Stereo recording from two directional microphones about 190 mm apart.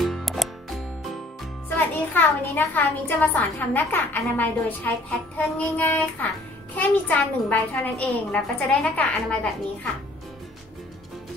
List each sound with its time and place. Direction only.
0.0 s music: centre (ahead or behind)
1.8 s a child's voice: 10° left (ahead or behind)